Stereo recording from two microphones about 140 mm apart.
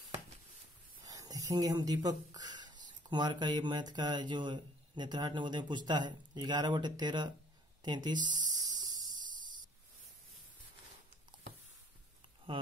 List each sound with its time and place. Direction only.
1.0 s speech: 25° right (ahead or behind)
12.5 s speech: 40° right (ahead or behind)